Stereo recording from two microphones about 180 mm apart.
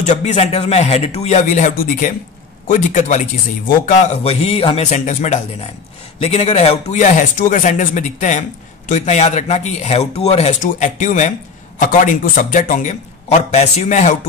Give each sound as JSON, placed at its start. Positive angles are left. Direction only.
{"t": 0.0, "sound": "a man's voice", "side_deg": 40}